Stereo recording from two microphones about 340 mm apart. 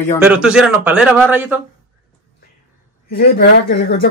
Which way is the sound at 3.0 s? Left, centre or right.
Left.